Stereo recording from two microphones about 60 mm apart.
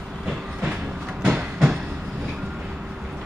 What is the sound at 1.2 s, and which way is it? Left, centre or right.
Train, centre.